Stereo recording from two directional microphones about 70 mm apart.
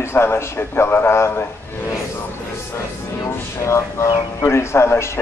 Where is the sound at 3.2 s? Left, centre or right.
Left.